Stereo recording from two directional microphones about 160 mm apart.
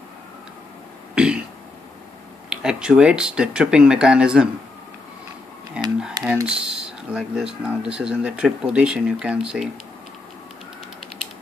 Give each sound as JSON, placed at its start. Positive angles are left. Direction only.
{"t": 1.1, "sound": "a sound", "side_deg": -5}
{"t": 2.5, "sound": "speech", "side_deg": -5}
{"t": 6.4, "sound": "speech", "side_deg": -5}